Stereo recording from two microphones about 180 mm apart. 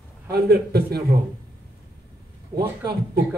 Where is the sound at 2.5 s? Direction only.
55° right (ahead or behind).